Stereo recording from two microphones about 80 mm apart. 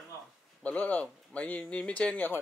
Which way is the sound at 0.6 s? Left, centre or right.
Centre.